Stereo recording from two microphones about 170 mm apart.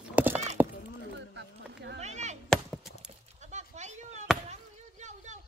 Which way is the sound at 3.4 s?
45° right (ahead or behind).